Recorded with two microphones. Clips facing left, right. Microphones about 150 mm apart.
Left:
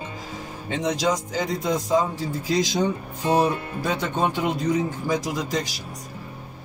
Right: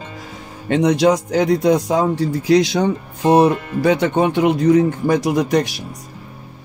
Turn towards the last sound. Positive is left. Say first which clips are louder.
# right 10 dB
turn(degrees=-65)  # may be behind; listen again after turning